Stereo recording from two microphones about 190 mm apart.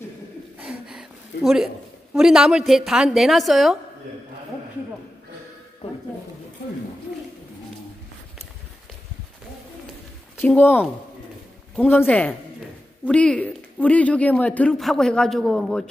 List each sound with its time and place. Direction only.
0.7 s a sound: 5° right (ahead or behind)
2.1 s speech: 5° right (ahead or behind)
10.4 s speech: 10° left (ahead or behind)